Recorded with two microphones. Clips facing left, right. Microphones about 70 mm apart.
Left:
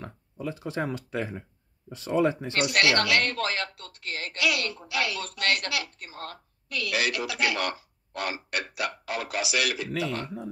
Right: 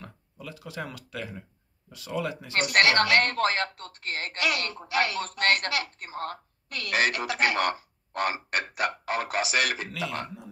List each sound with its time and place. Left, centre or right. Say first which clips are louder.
0.0 s speech: left 8 dB; left
2.5 s speech: right 6 dB; right